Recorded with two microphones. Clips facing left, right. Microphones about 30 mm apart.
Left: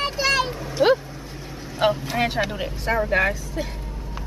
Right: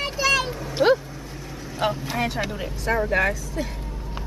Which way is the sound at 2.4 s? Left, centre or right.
Centre.